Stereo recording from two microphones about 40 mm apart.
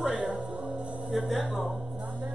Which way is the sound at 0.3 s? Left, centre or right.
Centre.